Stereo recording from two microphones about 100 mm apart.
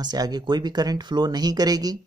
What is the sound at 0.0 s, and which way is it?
Speech, 45° right (ahead or behind).